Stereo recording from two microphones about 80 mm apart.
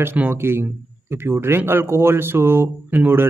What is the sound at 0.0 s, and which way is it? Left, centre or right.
A man's voice, right.